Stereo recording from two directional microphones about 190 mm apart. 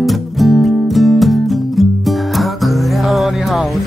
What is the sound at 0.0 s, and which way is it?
Music, centre (ahead or behind).